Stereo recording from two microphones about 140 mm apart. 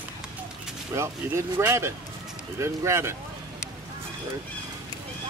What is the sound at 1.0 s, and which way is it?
Speech, 20° right (ahead or behind).